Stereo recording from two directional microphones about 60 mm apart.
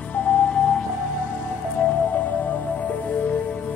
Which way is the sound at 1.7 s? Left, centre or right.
Left.